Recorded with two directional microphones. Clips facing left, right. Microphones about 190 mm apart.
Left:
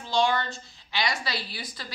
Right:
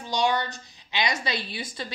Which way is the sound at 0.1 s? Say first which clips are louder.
Even; 15° right (ahead or behind).